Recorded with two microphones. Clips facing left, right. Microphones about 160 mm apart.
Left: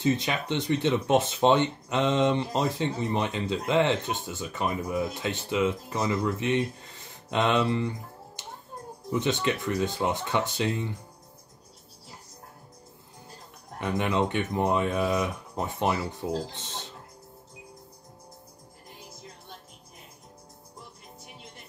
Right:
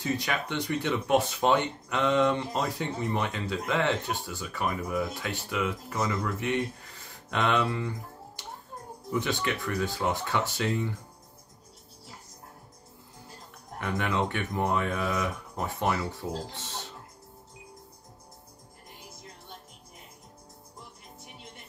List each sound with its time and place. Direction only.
0.0 s speech: 20° left (ahead or behind)
9.1 s speech: 20° left (ahead or behind)
13.7 s speech: 20° left (ahead or behind)